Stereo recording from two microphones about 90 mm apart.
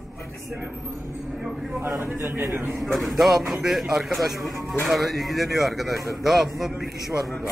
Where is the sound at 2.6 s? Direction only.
Centre (ahead or behind).